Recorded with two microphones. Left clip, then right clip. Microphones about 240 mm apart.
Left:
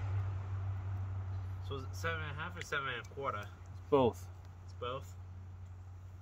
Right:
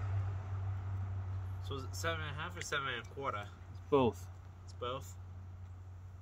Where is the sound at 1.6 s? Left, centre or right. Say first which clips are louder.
Right 1 dB; right.